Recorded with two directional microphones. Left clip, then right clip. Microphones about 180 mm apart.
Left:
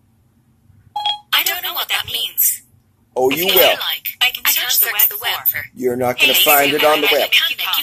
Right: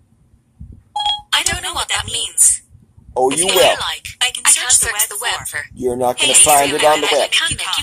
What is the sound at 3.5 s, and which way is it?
Speech, 45° right (ahead or behind).